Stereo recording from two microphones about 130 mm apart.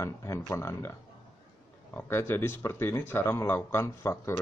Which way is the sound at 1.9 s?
20° left (ahead or behind).